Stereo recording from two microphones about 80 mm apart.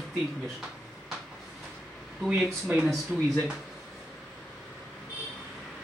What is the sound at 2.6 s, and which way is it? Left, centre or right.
Speech, centre.